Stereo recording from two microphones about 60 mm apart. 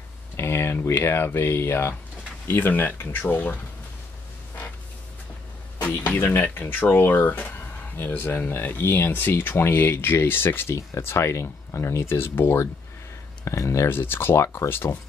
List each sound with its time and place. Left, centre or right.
0.4 s a sound: left
0.8 s speech: left
5.8 s speech: left
6.1 s speech: left
13.8 s speech: left